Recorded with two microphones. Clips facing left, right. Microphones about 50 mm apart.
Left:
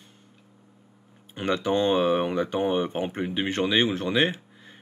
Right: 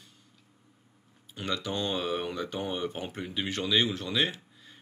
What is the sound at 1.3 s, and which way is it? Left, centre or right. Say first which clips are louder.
Speech: left 8 dB; left.